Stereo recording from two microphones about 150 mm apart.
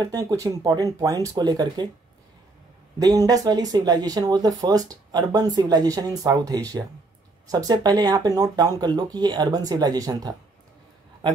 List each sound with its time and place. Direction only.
0.0 s speech: 25° right (ahead or behind)
3.0 s speech: 25° right (ahead or behind)